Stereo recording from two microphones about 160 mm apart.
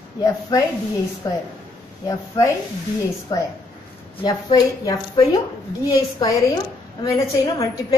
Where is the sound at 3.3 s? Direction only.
20° left (ahead or behind).